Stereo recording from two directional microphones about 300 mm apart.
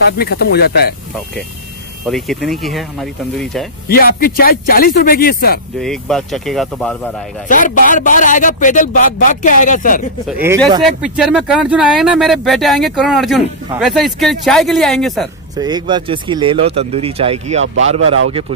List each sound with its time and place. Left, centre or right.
0.2 s speech: left
2.0 s speech: centre
3.9 s a man's voice: left
5.8 s speech: centre
7.4 s a man's voice: left
10.8 s speech: centre
15.5 s speech: centre